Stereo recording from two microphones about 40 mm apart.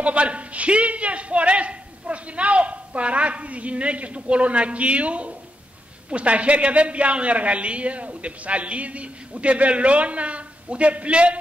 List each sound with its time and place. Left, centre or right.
0.0 s a man's voice: right